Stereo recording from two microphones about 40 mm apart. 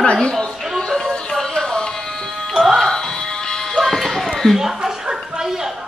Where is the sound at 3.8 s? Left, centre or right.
Centre.